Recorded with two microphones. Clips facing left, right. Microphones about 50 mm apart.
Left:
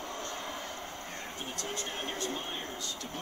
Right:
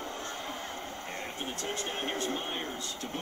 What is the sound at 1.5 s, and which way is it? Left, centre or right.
Speech, right.